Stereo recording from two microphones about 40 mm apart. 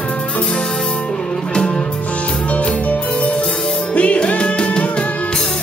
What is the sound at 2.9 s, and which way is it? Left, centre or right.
Music, left.